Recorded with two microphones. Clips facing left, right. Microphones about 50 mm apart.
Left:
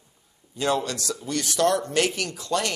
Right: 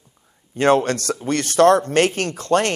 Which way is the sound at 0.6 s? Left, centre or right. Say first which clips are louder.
Right 9 dB; right.